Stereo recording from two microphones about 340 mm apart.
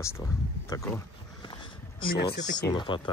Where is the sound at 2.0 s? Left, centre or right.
Centre.